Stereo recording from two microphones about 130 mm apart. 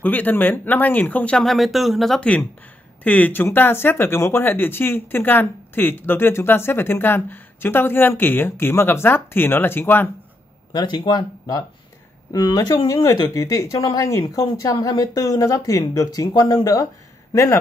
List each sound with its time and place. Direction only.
0.0 s speech: 15° left (ahead or behind)
10.7 s speech: 35° left (ahead or behind)